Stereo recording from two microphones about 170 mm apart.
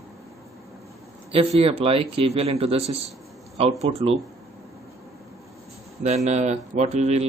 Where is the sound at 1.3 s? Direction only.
35° right (ahead or behind).